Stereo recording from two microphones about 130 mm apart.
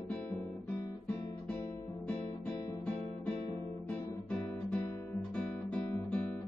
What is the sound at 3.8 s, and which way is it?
Guitar, 10° left (ahead or behind).